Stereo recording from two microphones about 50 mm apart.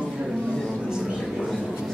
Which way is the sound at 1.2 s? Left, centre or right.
Centre.